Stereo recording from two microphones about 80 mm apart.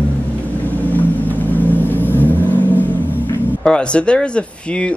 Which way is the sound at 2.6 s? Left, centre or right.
Right.